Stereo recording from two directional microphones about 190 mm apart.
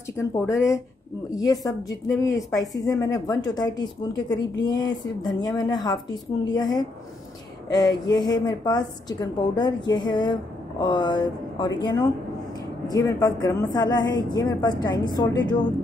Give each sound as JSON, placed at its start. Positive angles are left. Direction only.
{"t": 1.3, "sound": "a woman's voice", "side_deg": 20}